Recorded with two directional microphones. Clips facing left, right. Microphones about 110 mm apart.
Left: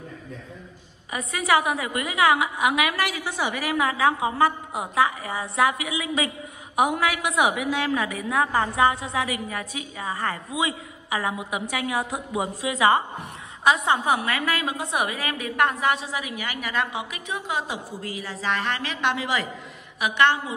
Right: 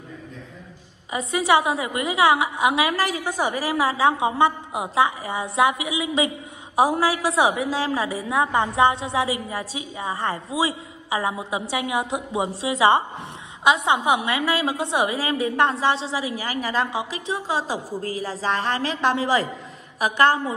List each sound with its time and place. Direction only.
1.1 s a woman's voice: 25° right (ahead or behind)